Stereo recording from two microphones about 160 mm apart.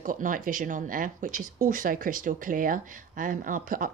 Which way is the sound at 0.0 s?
55° right (ahead or behind).